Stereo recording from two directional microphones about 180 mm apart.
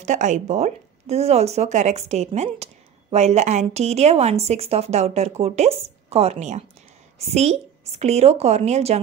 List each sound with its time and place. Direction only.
0.0 s speech: 40° right (ahead or behind)